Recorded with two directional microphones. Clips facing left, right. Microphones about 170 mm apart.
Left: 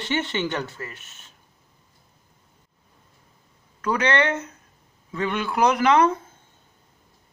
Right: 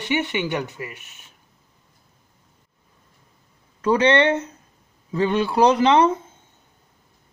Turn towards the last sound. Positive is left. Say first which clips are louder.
# right 2 dB
turn(degrees=-30)  # may be behind; listen again after turning